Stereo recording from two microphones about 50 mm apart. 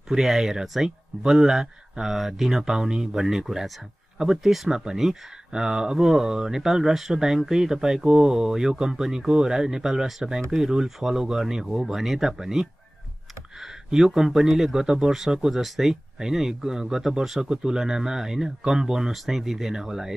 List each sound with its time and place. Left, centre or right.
0.1 s speech: centre